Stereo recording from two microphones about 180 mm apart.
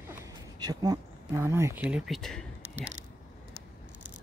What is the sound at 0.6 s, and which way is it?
Speech, 20° right (ahead or behind).